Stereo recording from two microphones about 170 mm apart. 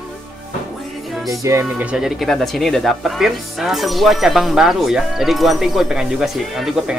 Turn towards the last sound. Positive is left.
turn(degrees=0)  # may be behind; listen again after turning